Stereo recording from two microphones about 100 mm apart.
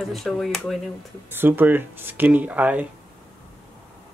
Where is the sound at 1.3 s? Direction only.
20° right (ahead or behind).